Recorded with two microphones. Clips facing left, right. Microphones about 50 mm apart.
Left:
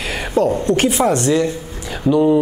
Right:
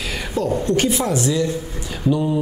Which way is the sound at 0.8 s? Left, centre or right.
Left.